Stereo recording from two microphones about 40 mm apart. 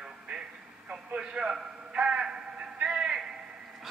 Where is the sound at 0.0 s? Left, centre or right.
Right.